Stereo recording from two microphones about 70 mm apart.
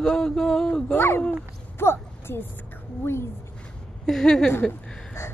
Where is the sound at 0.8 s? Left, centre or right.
Left.